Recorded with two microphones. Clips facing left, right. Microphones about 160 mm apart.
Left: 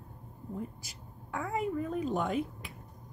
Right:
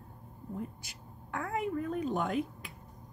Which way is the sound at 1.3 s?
Centre (ahead or behind).